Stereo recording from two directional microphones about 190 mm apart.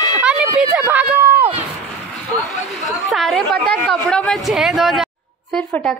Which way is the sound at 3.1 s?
Centre (ahead or behind).